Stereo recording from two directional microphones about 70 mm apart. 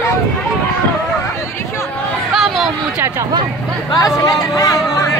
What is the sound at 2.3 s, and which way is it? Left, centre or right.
Chatter, centre.